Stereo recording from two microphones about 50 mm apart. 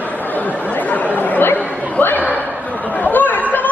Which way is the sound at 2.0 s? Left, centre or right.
Left.